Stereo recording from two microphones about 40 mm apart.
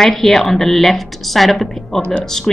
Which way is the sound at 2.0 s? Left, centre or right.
Left.